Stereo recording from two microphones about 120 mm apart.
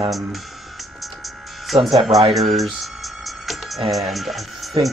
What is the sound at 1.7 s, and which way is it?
Speech, centre (ahead or behind).